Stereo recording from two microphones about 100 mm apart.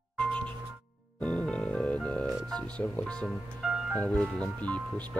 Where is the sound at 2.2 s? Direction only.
Centre (ahead or behind).